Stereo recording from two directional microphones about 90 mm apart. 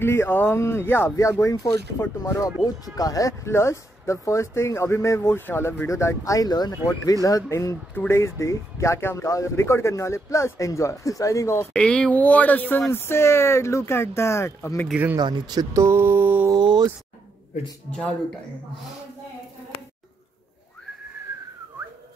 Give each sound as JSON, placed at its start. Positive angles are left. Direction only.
{"t": 0.0, "sound": "speech", "side_deg": 30}
{"t": 1.4, "sound": "speech", "side_deg": 35}
{"t": 11.7, "sound": "speech", "side_deg": 10}
{"t": 15.1, "sound": "speech", "side_deg": -55}
{"t": 15.8, "sound": "mantra", "side_deg": -25}
{"t": 16.5, "sound": "a sound", "side_deg": -55}